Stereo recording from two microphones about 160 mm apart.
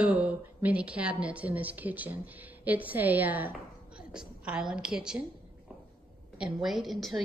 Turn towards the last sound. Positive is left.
turn(degrees=0)  # may be behind; listen again after turning